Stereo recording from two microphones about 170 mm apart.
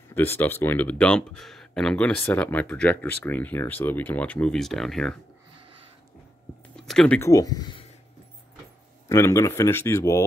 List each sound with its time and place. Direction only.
0.1 s speech: 10° left (ahead or behind)
6.8 s a sound: 5° left (ahead or behind)
7.2 s speech: 20° left (ahead or behind)
9.1 s speech: 15° left (ahead or behind)